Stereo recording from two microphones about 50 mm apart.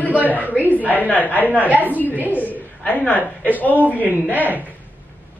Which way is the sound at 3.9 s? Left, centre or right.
Right.